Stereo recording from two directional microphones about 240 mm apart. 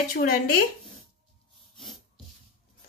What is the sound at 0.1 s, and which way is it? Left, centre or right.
Speech, left.